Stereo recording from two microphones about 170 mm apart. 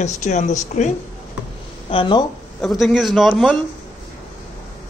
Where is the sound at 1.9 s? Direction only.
30° left (ahead or behind).